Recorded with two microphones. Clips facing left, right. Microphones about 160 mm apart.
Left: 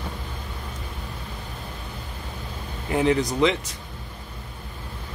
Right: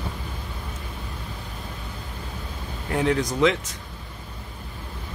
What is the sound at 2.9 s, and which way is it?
Speech, centre (ahead or behind).